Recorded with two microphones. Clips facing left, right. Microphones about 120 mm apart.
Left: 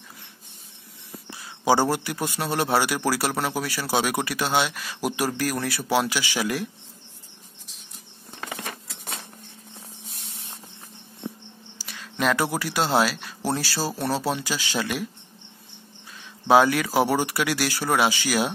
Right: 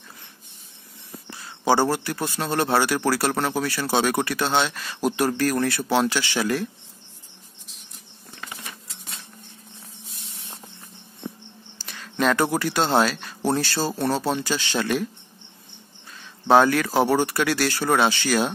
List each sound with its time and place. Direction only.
1.3 s speech: 10° left (ahead or behind)
8.5 s a sound: 70° left (ahead or behind)
11.8 s speech: 5° left (ahead or behind)
16.4 s speech: 10° left (ahead or behind)